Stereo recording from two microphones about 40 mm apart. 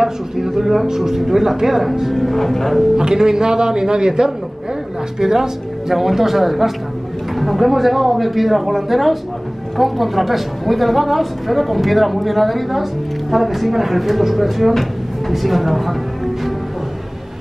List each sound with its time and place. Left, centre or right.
0.0 s speech: centre
2.2 s a woman's voice: centre
3.0 s a woman's voice: centre